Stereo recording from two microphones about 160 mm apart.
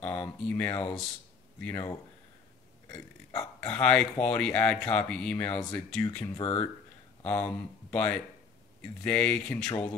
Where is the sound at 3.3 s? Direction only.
10° left (ahead or behind).